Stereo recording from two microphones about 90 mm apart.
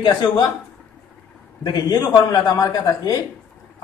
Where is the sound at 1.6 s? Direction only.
50° left (ahead or behind).